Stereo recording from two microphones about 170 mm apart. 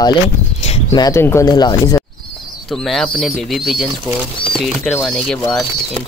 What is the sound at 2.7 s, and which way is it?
Speech, centre (ahead or behind).